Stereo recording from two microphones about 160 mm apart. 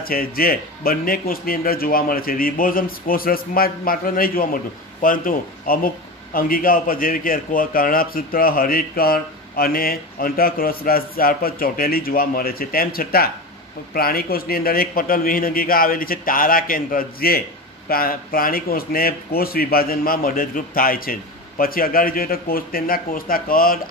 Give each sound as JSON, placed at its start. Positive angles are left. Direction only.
{"t": 0.0, "sound": "a man's voice", "side_deg": 65}